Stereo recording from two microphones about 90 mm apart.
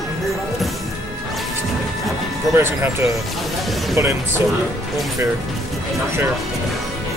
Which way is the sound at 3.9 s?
35° right (ahead or behind).